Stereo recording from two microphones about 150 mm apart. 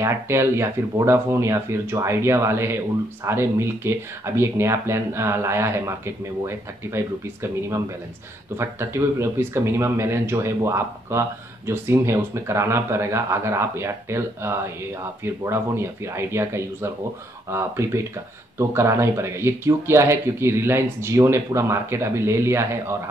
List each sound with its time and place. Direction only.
0.0 s speech: 20° right (ahead or behind)